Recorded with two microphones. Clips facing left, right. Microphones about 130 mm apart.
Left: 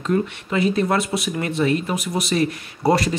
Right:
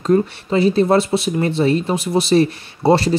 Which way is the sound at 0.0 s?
35° right (ahead or behind).